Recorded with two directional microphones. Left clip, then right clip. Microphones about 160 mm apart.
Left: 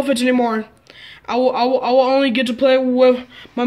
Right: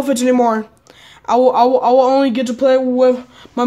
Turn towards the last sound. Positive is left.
turn(degrees=-10)  # may be behind; listen again after turning